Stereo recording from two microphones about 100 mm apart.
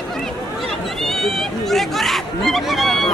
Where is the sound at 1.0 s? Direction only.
5° left (ahead or behind).